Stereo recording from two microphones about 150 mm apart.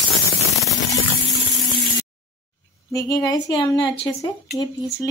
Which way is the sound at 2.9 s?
25° left (ahead or behind).